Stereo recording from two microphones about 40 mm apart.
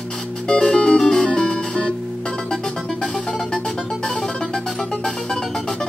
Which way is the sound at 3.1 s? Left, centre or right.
Left.